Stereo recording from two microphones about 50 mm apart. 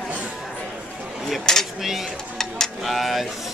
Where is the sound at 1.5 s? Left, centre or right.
Centre.